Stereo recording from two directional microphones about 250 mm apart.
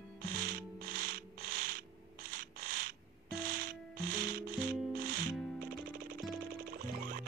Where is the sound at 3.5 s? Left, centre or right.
Right.